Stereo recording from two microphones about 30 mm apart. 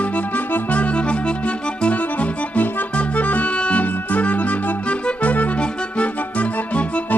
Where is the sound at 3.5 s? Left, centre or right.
Left.